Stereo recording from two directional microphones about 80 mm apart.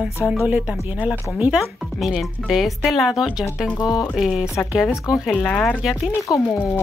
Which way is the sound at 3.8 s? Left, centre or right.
Left.